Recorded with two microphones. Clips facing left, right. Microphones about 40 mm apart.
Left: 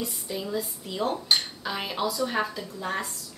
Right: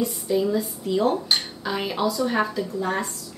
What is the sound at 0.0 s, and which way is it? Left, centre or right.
A woman's voice, centre.